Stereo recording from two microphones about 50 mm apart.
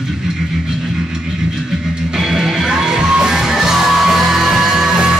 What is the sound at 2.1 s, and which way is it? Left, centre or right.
Music, centre.